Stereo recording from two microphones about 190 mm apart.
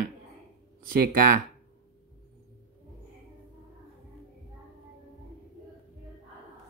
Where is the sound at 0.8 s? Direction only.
50° right (ahead or behind).